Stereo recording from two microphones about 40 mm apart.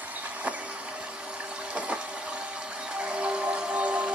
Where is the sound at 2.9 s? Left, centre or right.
Right.